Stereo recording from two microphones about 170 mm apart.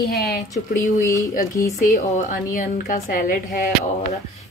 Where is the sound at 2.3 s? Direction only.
50° left (ahead or behind).